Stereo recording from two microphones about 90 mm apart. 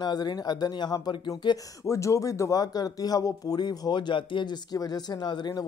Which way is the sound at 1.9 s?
35° left (ahead or behind).